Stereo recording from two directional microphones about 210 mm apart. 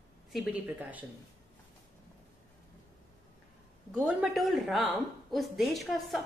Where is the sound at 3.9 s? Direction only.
5° right (ahead or behind).